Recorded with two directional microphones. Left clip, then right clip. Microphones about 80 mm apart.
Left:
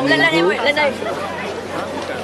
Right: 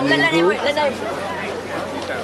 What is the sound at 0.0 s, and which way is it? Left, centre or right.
Speech, left.